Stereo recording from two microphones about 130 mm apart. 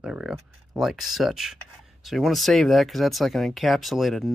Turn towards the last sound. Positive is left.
turn(degrees=0)  # may be behind; listen again after turning